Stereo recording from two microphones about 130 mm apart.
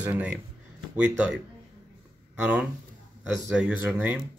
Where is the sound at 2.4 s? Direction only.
10° right (ahead or behind).